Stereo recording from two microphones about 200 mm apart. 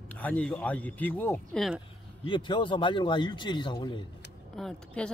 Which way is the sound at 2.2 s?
25° left (ahead or behind).